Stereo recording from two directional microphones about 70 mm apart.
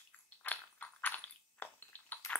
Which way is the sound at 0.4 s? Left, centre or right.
Left.